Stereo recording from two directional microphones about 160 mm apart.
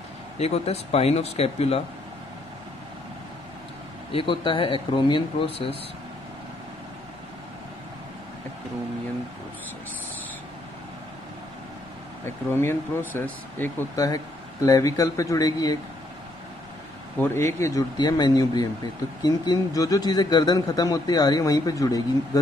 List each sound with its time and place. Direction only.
0.4 s speech: 40° left (ahead or behind)
4.1 s speech: 30° left (ahead or behind)
12.3 s speech: 15° left (ahead or behind)
17.2 s speech: 15° left (ahead or behind)